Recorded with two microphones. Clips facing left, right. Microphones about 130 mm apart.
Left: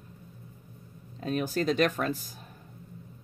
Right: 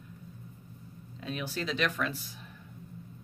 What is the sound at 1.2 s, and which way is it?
Speech, 45° left (ahead or behind).